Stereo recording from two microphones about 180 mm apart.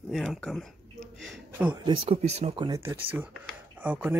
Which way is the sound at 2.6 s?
15° right (ahead or behind).